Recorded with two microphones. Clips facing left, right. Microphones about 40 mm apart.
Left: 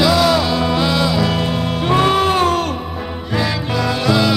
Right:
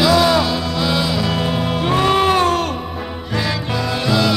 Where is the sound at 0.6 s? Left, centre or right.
Left.